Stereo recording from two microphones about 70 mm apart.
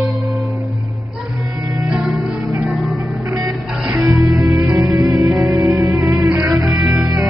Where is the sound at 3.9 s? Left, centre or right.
Right.